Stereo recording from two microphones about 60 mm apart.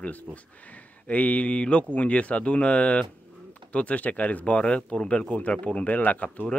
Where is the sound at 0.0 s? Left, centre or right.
Left.